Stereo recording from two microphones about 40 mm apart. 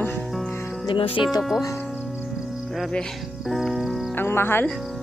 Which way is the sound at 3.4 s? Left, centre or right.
Centre.